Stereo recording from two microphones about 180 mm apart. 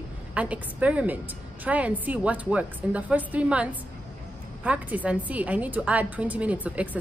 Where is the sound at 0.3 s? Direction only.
5° right (ahead or behind).